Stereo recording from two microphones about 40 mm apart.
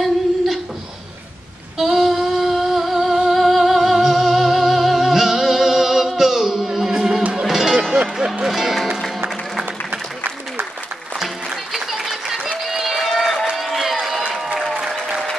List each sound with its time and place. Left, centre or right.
1.8 s humming: centre
7.4 s music: centre
7.7 s a sound: right
8.5 s music: centre
11.7 s applause: centre
12.6 s crowd: centre
14.6 s applause: centre